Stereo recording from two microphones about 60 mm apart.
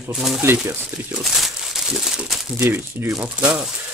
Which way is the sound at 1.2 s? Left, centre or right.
Centre.